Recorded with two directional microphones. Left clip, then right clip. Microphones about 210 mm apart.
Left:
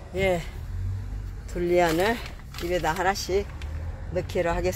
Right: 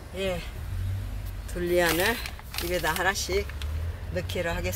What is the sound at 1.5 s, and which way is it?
Speech, 10° left (ahead or behind).